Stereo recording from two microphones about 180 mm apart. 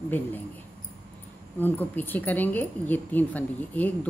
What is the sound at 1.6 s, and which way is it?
Speech, 10° left (ahead or behind).